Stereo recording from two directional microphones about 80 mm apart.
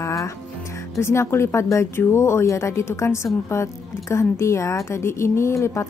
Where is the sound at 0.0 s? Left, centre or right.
Left.